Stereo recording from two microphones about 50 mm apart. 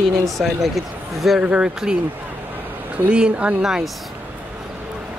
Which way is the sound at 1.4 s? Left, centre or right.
Centre.